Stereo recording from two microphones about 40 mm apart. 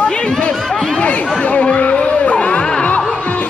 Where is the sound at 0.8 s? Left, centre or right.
Left.